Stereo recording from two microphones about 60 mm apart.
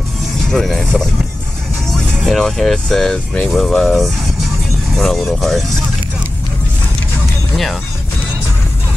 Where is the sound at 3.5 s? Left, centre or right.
Centre.